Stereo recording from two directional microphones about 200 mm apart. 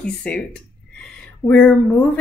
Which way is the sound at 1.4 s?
5° left (ahead or behind).